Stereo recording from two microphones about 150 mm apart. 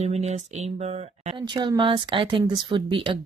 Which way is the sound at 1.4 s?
30° right (ahead or behind).